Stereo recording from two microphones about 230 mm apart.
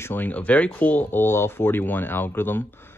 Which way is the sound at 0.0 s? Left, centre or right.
Centre.